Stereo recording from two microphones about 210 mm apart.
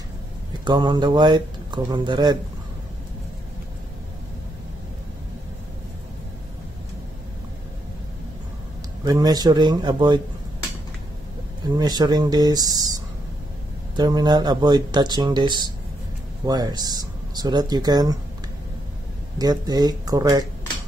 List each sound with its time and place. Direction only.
0.7 s speech: 20° right (ahead or behind)
9.0 s speech: 20° right (ahead or behind)
11.6 s speech: 20° right (ahead or behind)
19.3 s speech: 20° right (ahead or behind)